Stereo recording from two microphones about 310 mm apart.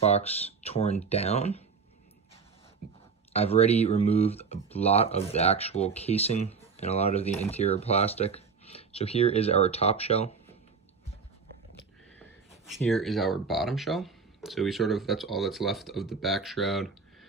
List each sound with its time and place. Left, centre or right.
0.0 s speech: centre
3.3 s speech: centre
12.7 s speech: centre